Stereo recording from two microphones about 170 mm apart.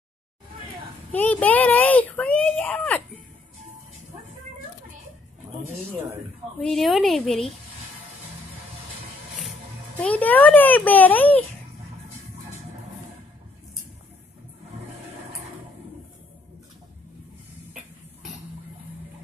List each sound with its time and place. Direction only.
1.1 s speech: 10° left (ahead or behind)
6.6 s speech: centre (ahead or behind)
10.0 s speech: 10° left (ahead or behind)